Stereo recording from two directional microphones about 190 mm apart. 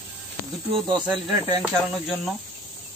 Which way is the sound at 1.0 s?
5° right (ahead or behind).